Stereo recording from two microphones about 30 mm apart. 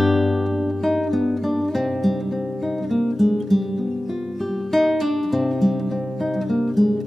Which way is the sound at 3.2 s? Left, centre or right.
Centre.